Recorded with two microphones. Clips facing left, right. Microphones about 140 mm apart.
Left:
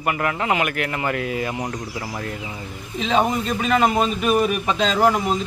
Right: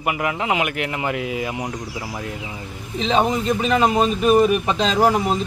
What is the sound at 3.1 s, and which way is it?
A man's voice, 25° right (ahead or behind).